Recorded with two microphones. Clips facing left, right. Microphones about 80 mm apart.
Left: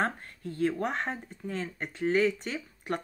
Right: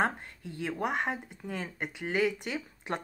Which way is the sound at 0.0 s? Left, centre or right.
Centre.